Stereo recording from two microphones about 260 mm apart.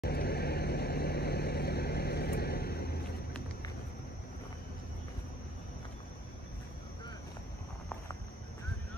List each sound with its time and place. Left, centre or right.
0.0 s vehicle: left